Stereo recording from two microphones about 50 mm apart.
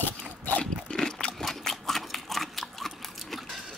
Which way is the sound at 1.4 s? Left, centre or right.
Centre.